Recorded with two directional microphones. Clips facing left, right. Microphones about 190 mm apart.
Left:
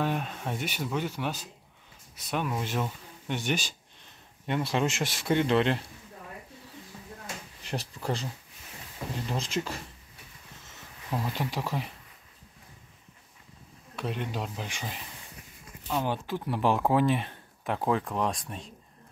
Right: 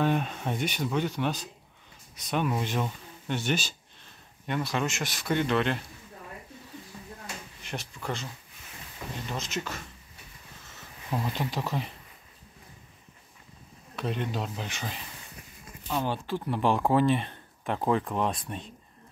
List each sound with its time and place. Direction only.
0.0 s speech: 5° left (ahead or behind)
3.3 s speech: 15° left (ahead or behind)
4.5 s speech: 25° left (ahead or behind)
7.6 s speech: 35° left (ahead or behind)
9.3 s speech: 30° left (ahead or behind)
11.1 s speech: 5° left (ahead or behind)
13.9 s speech: 10° left (ahead or behind)